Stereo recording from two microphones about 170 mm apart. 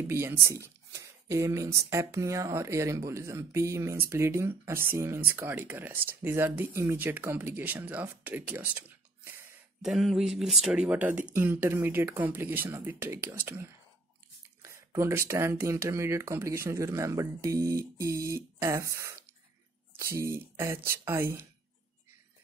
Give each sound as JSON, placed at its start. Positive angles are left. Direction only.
{"t": 0.0, "sound": "speech", "side_deg": -15}
{"t": 9.8, "sound": "speech", "side_deg": 0}
{"t": 14.6, "sound": "speech", "side_deg": -15}